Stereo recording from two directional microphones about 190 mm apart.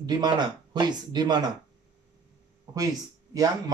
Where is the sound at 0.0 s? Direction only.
20° right (ahead or behind).